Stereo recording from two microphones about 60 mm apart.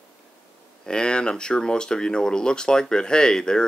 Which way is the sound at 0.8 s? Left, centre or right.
Centre.